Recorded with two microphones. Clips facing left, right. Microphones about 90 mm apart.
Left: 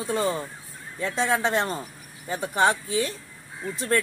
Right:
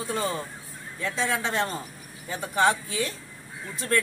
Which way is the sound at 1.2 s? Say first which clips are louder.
Left 5 dB; 40° left (ahead or behind).